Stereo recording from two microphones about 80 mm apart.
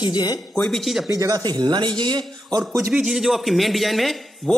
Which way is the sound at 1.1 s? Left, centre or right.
Right.